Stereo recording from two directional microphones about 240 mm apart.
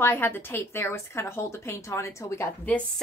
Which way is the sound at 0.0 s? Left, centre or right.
Centre.